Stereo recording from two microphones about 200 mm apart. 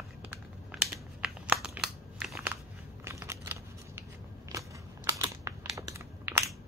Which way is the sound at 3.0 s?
15° right (ahead or behind).